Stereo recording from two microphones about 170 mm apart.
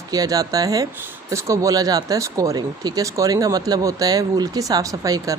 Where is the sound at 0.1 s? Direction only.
20° right (ahead or behind).